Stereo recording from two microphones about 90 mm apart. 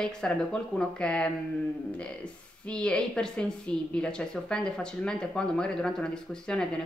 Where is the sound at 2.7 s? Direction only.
10° left (ahead or behind).